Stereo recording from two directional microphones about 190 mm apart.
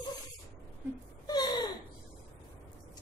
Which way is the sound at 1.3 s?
20° left (ahead or behind).